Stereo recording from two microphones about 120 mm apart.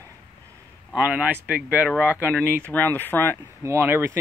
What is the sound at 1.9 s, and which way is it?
Speech, 15° left (ahead or behind).